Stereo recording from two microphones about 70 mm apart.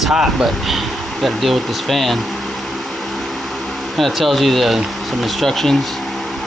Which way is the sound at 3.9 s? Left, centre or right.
Centre.